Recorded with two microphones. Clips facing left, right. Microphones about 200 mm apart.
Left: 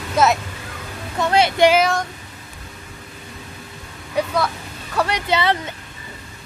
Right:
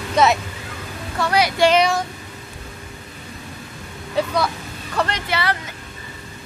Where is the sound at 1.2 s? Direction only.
25° left (ahead or behind).